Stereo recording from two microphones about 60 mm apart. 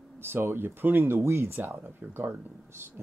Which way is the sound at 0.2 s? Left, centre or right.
Right.